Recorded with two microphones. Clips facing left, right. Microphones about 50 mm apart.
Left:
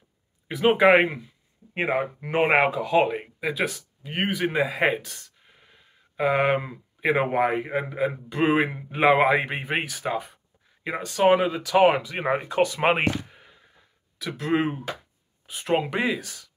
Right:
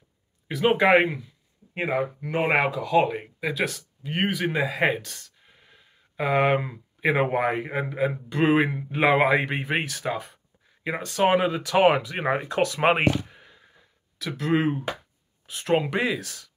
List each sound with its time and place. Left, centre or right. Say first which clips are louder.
0.5 s speech: left 2 dB; centre
3.1 s speech: left 1 dB; centre